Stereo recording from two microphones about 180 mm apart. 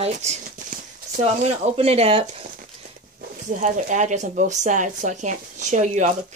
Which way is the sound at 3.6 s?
45° right (ahead or behind).